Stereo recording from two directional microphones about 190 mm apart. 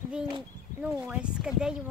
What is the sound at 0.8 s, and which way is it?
Speech, 5° right (ahead or behind).